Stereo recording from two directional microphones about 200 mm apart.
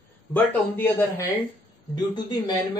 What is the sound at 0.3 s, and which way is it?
Speech, 10° left (ahead or behind).